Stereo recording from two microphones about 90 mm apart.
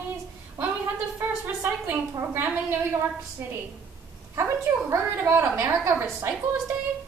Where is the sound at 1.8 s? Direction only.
25° right (ahead or behind).